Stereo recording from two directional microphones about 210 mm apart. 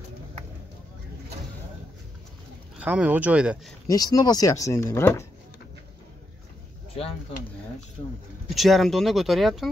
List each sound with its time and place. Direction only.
2.8 s speech: 5° right (ahead or behind)
3.8 s speech: 15° left (ahead or behind)
8.5 s speech: centre (ahead or behind)